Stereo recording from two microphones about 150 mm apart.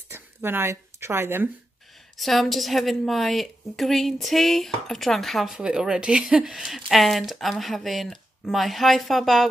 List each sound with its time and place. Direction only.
0.1 s speech: 15° right (ahead or behind)
2.1 s a woman's voice: centre (ahead or behind)